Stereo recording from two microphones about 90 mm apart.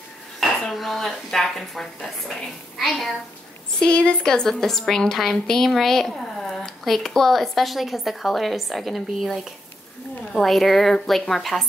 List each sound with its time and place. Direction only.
0.7 s a woman's voice: centre (ahead or behind)